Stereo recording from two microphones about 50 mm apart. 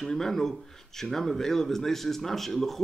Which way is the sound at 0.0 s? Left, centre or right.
Centre.